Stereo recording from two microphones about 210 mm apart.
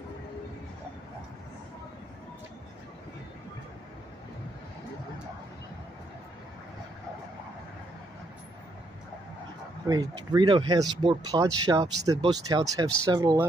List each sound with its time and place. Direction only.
9.8 s speech: 20° right (ahead or behind)